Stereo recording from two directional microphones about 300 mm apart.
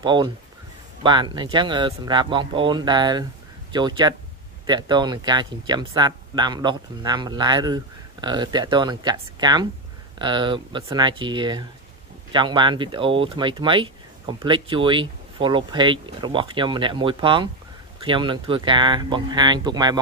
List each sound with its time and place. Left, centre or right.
0.0 s speech: centre